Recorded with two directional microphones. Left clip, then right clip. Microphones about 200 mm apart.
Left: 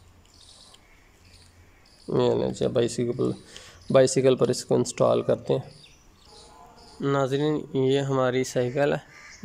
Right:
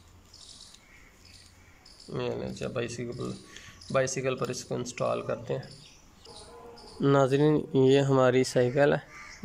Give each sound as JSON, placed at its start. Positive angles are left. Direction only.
{"t": 2.0, "sound": "speech", "side_deg": 25}
{"t": 7.0, "sound": "speech", "side_deg": -5}